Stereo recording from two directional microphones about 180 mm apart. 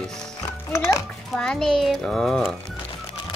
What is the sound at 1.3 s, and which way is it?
Speech, 5° left (ahead or behind).